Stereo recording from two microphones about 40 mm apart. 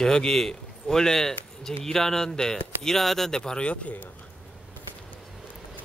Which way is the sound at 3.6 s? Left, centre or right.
Left.